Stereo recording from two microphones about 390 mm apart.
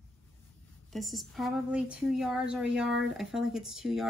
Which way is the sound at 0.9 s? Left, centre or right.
Centre.